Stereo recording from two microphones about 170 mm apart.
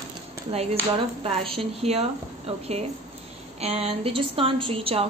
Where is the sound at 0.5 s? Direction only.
35° right (ahead or behind).